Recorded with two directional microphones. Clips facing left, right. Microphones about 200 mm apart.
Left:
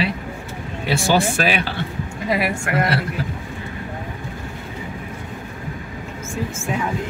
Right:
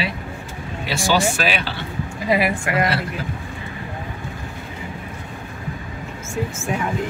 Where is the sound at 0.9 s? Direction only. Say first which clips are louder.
Left 1 dB; 50° left (ahead or behind).